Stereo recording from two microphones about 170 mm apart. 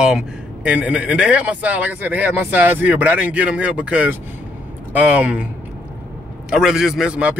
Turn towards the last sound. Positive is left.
turn(degrees=-5)  # may be behind; listen again after turning